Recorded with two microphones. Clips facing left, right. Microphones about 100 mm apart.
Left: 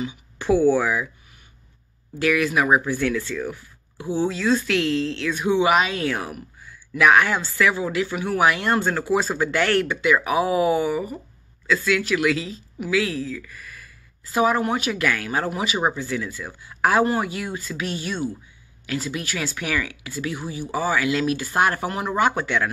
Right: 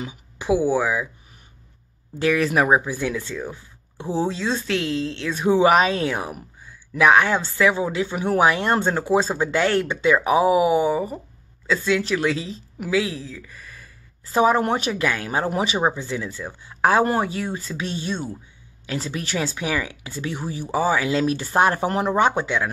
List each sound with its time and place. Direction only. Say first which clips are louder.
0.4 s speech: left 2 dB; 10° right (ahead or behind)
2.1 s speech: right 1 dB; 30° right (ahead or behind)
2.8 s speech: left 3 dB; 15° right (ahead or behind); by 6.0 s 35° right (ahead or behind)
6.0 s speech: even; 20° right (ahead or behind)